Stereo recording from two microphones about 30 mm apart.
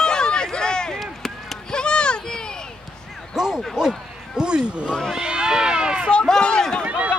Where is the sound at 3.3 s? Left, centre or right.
Centre.